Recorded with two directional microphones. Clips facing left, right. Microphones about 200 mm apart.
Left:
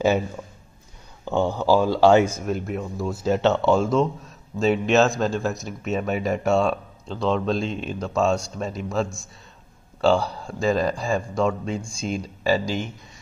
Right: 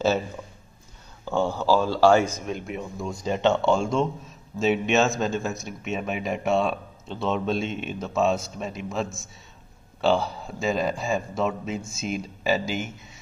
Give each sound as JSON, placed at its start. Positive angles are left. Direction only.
{"t": 1.2, "sound": "speech", "side_deg": 15}